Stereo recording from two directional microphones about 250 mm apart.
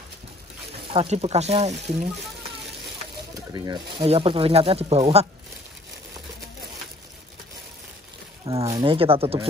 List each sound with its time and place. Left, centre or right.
0.9 s speech: right
3.5 s speech: centre
8.5 s speech: centre